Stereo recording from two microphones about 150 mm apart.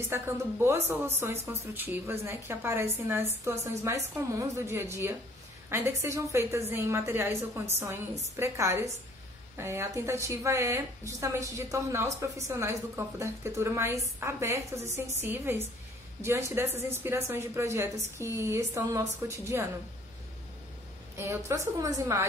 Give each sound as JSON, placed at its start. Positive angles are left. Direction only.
{"t": 0.1, "sound": "a woman's voice", "side_deg": -15}
{"t": 21.2, "sound": "a woman's voice", "side_deg": -20}